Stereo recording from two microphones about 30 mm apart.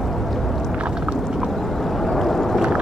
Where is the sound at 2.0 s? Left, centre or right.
Centre.